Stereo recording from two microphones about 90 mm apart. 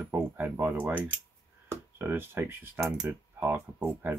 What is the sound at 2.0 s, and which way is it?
Speech, 25° right (ahead or behind).